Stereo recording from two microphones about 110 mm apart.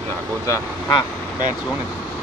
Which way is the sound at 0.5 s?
35° left (ahead or behind).